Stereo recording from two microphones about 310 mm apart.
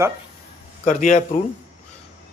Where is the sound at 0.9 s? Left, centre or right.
Left.